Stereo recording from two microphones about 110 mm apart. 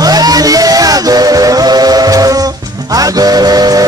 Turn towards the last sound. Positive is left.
turn(degrees=-35)  # may be behind; listen again after turning